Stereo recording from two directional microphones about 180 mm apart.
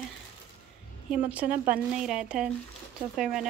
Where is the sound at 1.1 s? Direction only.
5° right (ahead or behind).